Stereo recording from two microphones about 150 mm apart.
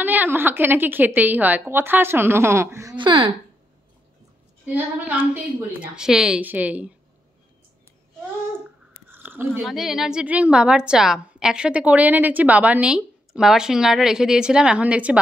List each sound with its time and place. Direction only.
0.0 s a woman's voice: 10° right (ahead or behind)
3.0 s speech: 35° right (ahead or behind)
4.6 s a woman's voice: 10° right (ahead or behind)
9.1 s chewing: 15° right (ahead or behind)
9.7 s a woman's voice: centre (ahead or behind)